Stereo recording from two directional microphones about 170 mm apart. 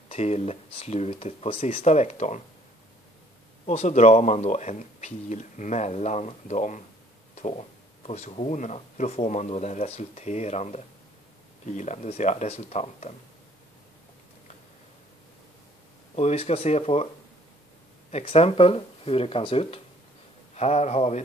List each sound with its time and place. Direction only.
0.1 s speech: 40° left (ahead or behind)
3.6 s speech: 40° left (ahead or behind)
16.2 s speech: 40° left (ahead or behind)
18.1 s speech: 35° left (ahead or behind)